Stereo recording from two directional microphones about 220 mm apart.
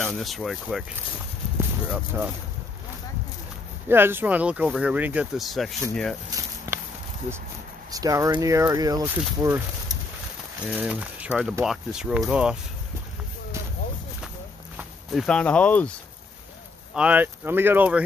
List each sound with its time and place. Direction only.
0.0 s speech: centre (ahead or behind)
1.9 s speech: 5° right (ahead or behind)
3.9 s speech: 10° right (ahead or behind)
6.7 s a sound: 10° right (ahead or behind)
7.9 s speech: 15° right (ahead or behind)
10.8 s speech: 5° right (ahead or behind)
14.8 s speech: centre (ahead or behind)
16.9 s speech: 5° right (ahead or behind)